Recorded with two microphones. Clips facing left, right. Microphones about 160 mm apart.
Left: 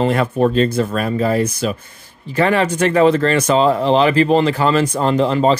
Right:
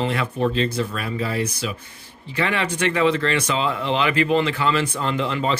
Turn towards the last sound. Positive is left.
turn(degrees=35)  # may be behind; listen again after turning